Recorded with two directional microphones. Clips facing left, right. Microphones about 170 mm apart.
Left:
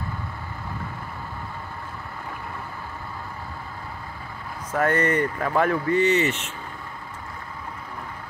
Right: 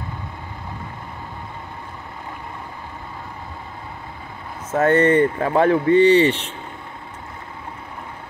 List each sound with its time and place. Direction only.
4.6 s speech: 25° right (ahead or behind)